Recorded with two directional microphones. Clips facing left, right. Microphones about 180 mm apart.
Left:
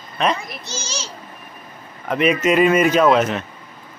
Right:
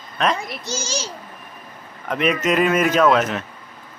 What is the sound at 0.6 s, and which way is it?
Speech, 50° right (ahead or behind).